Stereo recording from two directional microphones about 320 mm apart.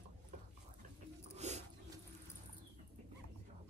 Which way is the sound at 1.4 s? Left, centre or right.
Right.